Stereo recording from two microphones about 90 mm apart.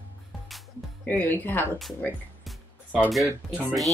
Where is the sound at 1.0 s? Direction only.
20° left (ahead or behind).